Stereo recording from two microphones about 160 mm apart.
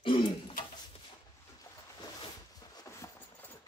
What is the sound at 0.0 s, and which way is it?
Throat clearing, 30° left (ahead or behind).